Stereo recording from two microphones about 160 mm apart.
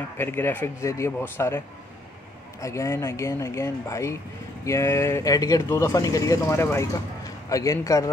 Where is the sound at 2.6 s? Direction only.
20° left (ahead or behind).